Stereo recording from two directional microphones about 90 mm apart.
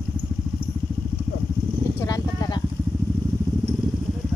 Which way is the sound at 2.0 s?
40° left (ahead or behind).